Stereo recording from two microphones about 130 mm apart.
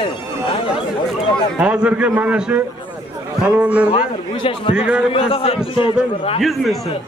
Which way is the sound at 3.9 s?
40° left (ahead or behind).